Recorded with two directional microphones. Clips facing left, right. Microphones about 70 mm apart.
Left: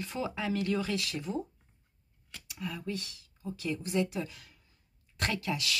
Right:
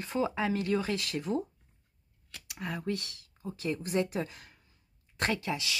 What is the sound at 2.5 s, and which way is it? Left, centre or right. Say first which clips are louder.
Speech: right 3 dB; right.